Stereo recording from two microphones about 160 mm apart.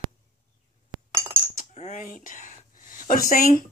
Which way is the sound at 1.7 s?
50° left (ahead or behind).